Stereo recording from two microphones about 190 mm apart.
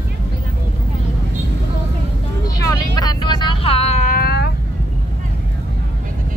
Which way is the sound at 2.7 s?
20° left (ahead or behind).